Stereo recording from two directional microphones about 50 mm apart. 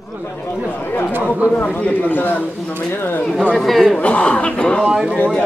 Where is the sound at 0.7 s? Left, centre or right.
Left.